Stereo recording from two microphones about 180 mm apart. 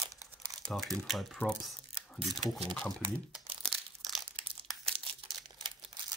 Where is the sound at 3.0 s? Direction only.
30° right (ahead or behind).